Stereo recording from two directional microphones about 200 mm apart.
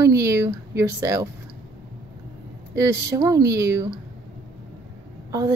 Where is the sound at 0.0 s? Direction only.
15° right (ahead or behind).